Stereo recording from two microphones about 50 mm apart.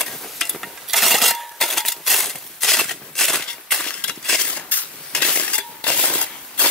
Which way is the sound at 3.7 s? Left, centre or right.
Centre.